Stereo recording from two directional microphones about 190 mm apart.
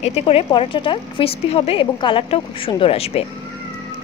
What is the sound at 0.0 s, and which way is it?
Speech, 35° left (ahead or behind).